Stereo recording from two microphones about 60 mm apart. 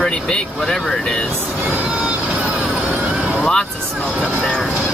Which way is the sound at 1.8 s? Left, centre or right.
Right.